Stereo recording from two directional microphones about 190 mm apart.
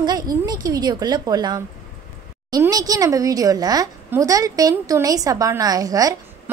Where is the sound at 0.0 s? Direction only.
20° right (ahead or behind).